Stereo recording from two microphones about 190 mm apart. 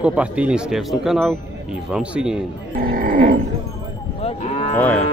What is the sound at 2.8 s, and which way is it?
Livestock, 50° right (ahead or behind).